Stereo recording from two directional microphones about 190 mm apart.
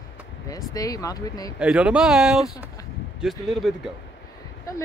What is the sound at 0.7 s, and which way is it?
Speech, 20° left (ahead or behind).